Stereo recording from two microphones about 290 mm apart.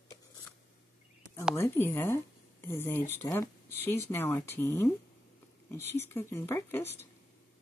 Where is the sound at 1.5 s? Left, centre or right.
Centre.